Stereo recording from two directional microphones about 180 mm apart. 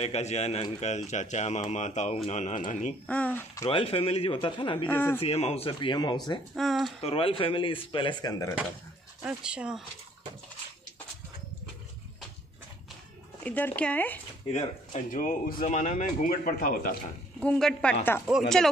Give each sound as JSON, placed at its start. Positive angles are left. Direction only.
{"t": 0.0, "sound": "speech", "side_deg": 35}
{"t": 3.1, "sound": "speech", "side_deg": 10}
{"t": 3.6, "sound": "speech", "side_deg": 30}
{"t": 4.8, "sound": "speech", "side_deg": 10}
{"t": 5.2, "sound": "speech", "side_deg": 35}
{"t": 6.5, "sound": "speech", "side_deg": 0}
{"t": 7.0, "sound": "speech", "side_deg": 30}
{"t": 9.2, "sound": "speech", "side_deg": -5}
{"t": 13.4, "sound": "speech", "side_deg": 10}
{"t": 14.5, "sound": "speech", "side_deg": 40}
{"t": 17.4, "sound": "speech", "side_deg": 5}